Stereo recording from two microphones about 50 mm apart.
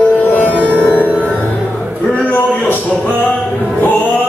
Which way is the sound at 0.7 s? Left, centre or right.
Left.